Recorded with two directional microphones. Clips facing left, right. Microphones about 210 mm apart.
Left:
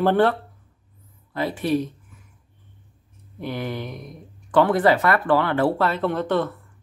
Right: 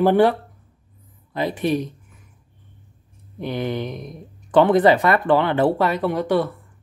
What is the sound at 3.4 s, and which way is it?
Speech, 20° right (ahead or behind).